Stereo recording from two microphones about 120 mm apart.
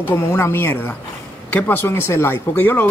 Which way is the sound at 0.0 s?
20° left (ahead or behind).